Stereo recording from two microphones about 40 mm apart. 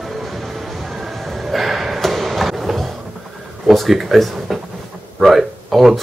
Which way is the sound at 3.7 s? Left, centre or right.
Centre.